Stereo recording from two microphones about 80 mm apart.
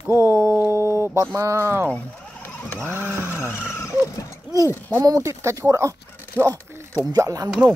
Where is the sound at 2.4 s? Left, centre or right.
Left.